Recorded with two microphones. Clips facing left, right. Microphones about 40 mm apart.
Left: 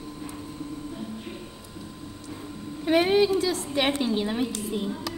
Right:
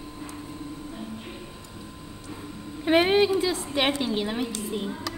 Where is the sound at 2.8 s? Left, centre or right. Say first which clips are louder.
Right 1 dB; right.